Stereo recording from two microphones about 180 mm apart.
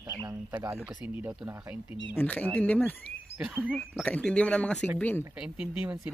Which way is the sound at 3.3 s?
5° right (ahead or behind).